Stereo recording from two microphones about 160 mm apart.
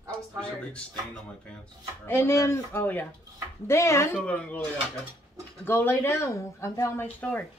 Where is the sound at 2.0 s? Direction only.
15° left (ahead or behind).